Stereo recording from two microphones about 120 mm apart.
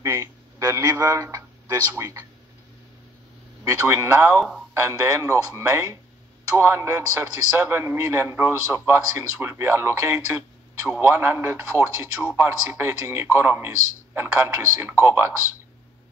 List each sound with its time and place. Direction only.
0.0 s speech: 30° right (ahead or behind)
3.6 s speech: 25° right (ahead or behind)